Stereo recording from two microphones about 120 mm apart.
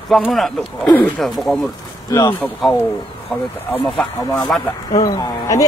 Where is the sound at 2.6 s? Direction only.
5° left (ahead or behind).